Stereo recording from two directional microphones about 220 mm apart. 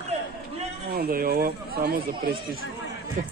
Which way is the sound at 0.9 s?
45° right (ahead or behind).